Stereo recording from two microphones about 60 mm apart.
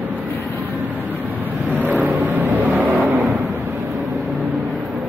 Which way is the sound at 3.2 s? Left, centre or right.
Centre.